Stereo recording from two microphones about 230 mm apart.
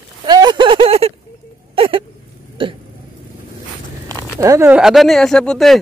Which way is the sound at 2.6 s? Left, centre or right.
Right.